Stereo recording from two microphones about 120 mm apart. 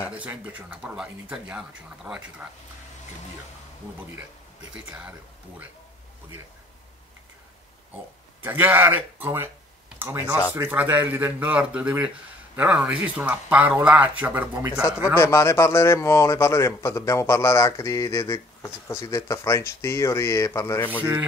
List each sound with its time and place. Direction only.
0.1 s speech: 10° right (ahead or behind)
4.7 s speech: 10° right (ahead or behind)
8.4 s speech: 15° right (ahead or behind)
9.9 s a sound: 20° right (ahead or behind)
10.5 s speech: 15° right (ahead or behind)
15.1 s a man's voice: 25° left (ahead or behind)
21.0 s rub: 20° right (ahead or behind)